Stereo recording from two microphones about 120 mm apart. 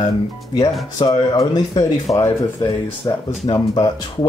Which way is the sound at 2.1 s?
20° left (ahead or behind).